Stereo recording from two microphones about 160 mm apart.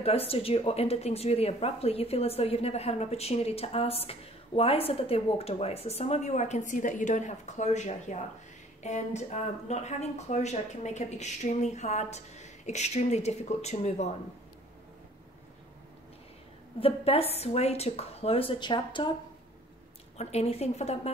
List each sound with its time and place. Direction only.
0.0 s speech: 40° left (ahead or behind)
16.8 s speech: 35° left (ahead or behind)
20.2 s speech: 40° left (ahead or behind)